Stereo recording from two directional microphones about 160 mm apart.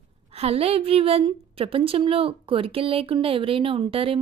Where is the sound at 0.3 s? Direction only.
40° right (ahead or behind).